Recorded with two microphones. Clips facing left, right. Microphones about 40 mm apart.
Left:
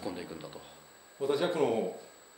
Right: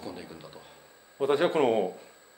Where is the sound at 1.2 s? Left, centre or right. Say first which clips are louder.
Right 5 dB; right.